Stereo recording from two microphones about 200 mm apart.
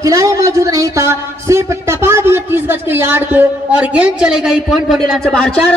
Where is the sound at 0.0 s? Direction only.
15° right (ahead or behind).